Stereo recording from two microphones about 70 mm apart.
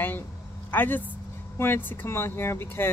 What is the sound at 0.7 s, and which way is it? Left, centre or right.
Speech, left.